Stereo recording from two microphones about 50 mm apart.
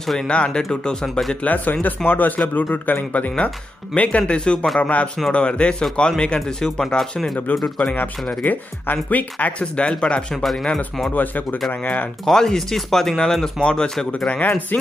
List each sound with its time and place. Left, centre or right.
0.0 s speech: centre
0.3 s speech: centre
1.3 s a man's voice: left
6.4 s speech: centre
7.8 s a man's voice: left
9.8 s speech: centre
10.3 s speech: centre
11.7 s a man's voice: left
12.3 s speech: centre
14.2 s a man's voice: left